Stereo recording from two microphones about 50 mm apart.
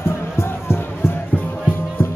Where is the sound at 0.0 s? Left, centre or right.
Left.